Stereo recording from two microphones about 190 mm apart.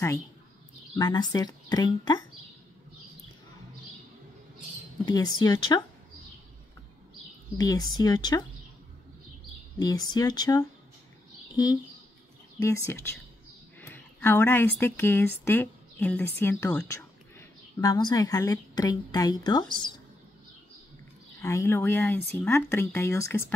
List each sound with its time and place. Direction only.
0.9 s speech: 20° left (ahead or behind)
5.0 s speech: 20° left (ahead or behind)
7.5 s speech: 20° left (ahead or behind)
9.8 s speech: 20° left (ahead or behind)
21.4 s speech: 15° left (ahead or behind)